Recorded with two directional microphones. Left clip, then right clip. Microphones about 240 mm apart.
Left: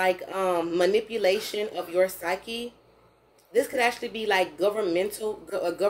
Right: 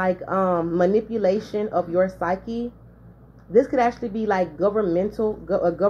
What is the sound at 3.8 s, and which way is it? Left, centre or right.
A woman's voice, left.